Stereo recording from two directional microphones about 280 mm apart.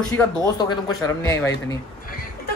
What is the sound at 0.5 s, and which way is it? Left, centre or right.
Speech, centre.